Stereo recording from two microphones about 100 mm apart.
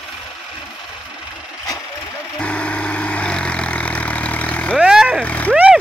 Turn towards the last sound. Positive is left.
turn(degrees=-5)  # may be behind; listen again after turning